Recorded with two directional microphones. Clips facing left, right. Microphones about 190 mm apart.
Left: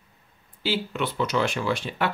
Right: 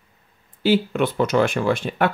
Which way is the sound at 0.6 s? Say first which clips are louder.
Right 8 dB; 50° right (ahead or behind).